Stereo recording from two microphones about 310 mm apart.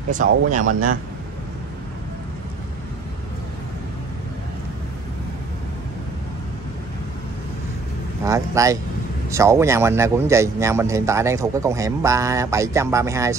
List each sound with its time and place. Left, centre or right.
0.1 s speech: right
8.3 s a man's voice: centre